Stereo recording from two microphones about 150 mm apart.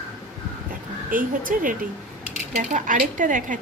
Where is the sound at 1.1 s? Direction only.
65° right (ahead or behind).